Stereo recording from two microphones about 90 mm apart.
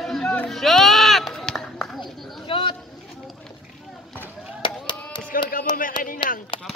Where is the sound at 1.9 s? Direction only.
65° left (ahead or behind).